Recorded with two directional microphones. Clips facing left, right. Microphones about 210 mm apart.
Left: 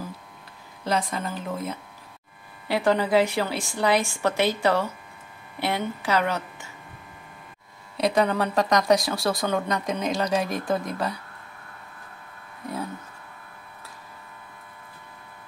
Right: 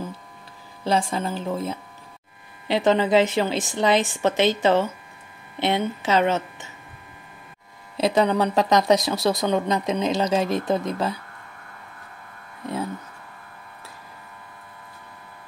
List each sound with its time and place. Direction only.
0.8 s speech: 30° right (ahead or behind)
8.0 s speech: 25° right (ahead or behind)